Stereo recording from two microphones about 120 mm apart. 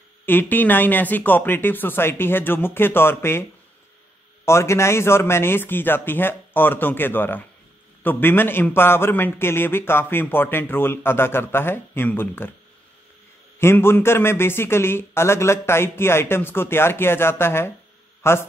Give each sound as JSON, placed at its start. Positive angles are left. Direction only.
{"t": 0.2, "sound": "speech", "side_deg": 15}
{"t": 4.5, "sound": "a man's voice", "side_deg": 25}
{"t": 13.6, "sound": "a man's voice", "side_deg": 20}